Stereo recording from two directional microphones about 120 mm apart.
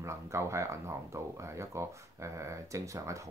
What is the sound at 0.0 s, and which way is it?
Speech, 25° right (ahead or behind).